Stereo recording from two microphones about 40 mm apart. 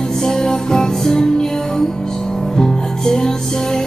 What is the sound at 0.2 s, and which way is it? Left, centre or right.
Music, centre.